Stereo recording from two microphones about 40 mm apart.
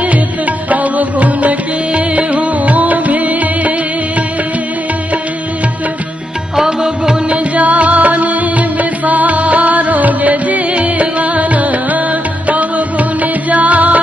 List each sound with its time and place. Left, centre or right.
0.7 s music: right
6.5 s music: centre
7.2 s music: right